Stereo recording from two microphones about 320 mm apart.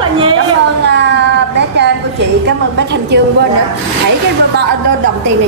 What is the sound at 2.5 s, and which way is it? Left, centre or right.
Speech, right.